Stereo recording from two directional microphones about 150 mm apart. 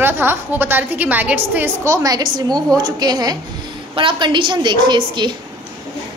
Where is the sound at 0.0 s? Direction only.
15° right (ahead or behind).